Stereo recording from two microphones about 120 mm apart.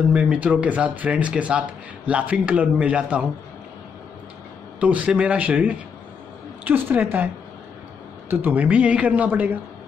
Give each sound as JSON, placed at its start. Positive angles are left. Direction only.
{"t": 0.1, "sound": "speech", "side_deg": -10}
{"t": 4.7, "sound": "speech", "side_deg": -10}
{"t": 8.3, "sound": "speech", "side_deg": -15}